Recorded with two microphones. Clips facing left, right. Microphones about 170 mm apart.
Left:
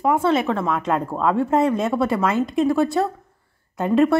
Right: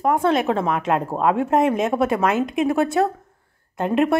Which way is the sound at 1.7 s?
20° right (ahead or behind).